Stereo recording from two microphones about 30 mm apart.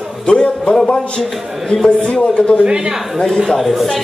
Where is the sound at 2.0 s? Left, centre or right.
Left.